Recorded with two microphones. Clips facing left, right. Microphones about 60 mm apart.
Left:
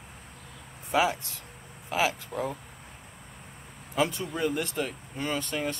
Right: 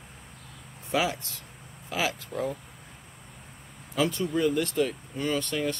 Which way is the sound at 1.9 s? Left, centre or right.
Centre.